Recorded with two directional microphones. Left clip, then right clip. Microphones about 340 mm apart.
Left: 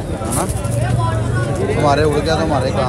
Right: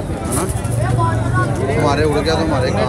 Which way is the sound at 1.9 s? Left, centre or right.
Centre.